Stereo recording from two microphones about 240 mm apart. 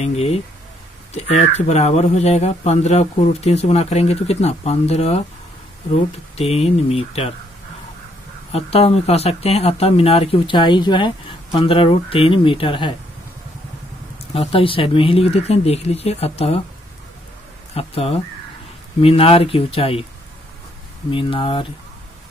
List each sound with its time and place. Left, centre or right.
0.0 s speech: left
8.5 s speech: left
14.3 s speech: left
17.7 s speech: left
21.1 s speech: left